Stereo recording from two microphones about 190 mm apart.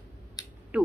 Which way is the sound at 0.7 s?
5° right (ahead or behind).